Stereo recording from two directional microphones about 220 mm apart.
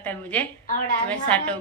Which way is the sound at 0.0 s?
5° left (ahead or behind).